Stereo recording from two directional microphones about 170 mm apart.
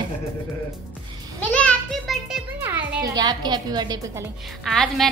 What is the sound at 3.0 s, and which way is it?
A woman's voice, 25° right (ahead or behind).